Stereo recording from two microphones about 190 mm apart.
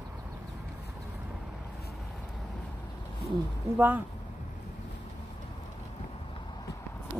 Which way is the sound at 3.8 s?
10° right (ahead or behind).